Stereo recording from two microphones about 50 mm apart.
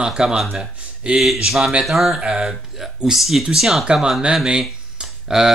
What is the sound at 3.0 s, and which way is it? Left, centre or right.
Speech, centre.